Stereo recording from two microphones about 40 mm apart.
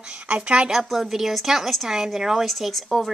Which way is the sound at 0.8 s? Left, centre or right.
Centre.